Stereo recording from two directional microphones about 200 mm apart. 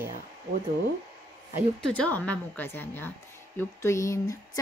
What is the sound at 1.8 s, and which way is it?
Speech, 5° left (ahead or behind).